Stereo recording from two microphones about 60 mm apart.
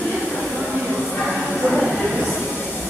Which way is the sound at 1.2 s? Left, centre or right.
Centre.